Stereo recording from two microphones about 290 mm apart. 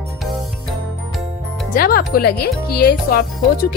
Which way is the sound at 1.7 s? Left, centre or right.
Left.